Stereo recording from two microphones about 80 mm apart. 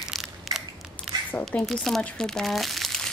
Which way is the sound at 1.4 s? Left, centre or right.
Centre.